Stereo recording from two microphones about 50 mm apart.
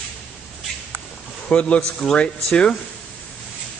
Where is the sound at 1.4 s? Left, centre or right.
Left.